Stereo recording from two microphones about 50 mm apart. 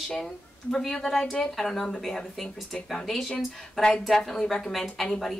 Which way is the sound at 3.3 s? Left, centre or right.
Centre.